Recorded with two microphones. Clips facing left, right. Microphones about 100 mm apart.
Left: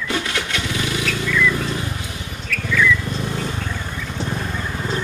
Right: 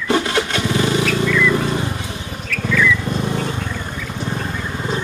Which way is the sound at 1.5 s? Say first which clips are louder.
Right 5 dB; 35° right (ahead or behind).